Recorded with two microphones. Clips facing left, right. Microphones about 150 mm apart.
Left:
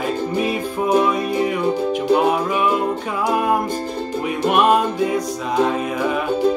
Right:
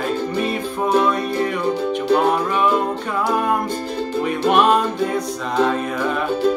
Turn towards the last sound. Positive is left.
turn(degrees=10)  # may be behind; listen again after turning